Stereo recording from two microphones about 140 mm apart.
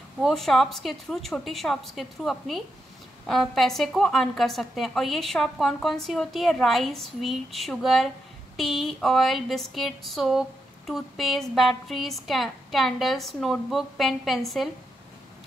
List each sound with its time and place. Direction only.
0.2 s a woman's voice: centre (ahead or behind)